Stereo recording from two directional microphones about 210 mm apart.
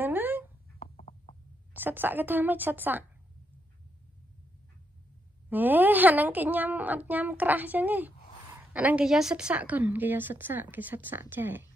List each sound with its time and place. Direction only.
0.0 s dog: 10° right (ahead or behind)
0.9 s a sound: 30° left (ahead or behind)
1.7 s a woman's voice: 10° right (ahead or behind)
5.5 s a woman's voice: 10° right (ahead or behind)